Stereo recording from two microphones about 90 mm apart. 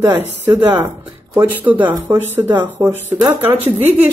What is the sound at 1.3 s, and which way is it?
Speech, 30° right (ahead or behind).